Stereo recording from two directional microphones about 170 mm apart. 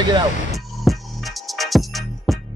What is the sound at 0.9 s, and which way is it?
Music, centre (ahead or behind).